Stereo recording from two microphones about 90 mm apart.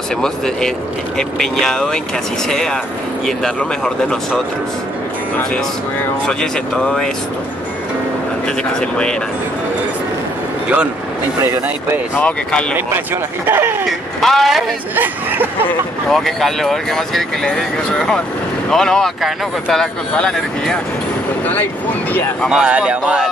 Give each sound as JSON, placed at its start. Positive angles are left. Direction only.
{"t": 0.2, "sound": "speech", "side_deg": 5}
{"t": 6.2, "sound": "speech", "side_deg": 10}
{"t": 11.4, "sound": "speech", "side_deg": -30}
{"t": 12.2, "sound": "speech", "side_deg": 15}
{"t": 12.7, "sound": "speech", "side_deg": -25}
{"t": 13.8, "sound": "speech", "side_deg": 0}
{"t": 16.1, "sound": "speech", "side_deg": 5}
{"t": 22.5, "sound": "speech", "side_deg": -10}